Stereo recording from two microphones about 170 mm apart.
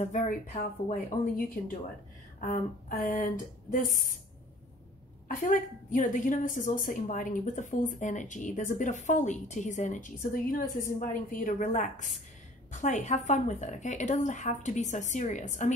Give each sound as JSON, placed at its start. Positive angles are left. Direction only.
{"t": 0.0, "sound": "a woman's voice", "side_deg": 45}
{"t": 3.0, "sound": "a woman's voice", "side_deg": 55}
{"t": 5.3, "sound": "a woman's voice", "side_deg": 50}